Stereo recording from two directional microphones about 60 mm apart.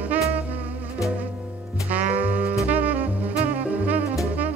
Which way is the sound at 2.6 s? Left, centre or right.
Right.